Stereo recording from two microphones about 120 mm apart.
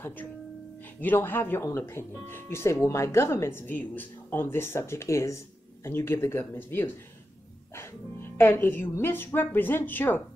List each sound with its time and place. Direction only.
1.0 s speech: 15° left (ahead or behind)